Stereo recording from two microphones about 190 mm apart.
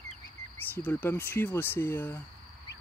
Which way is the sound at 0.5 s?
10° left (ahead or behind).